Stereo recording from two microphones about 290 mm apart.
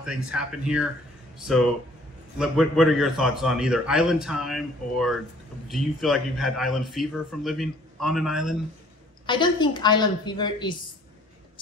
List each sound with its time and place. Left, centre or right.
0.0 s speech: centre
9.2 s a woman's voice: centre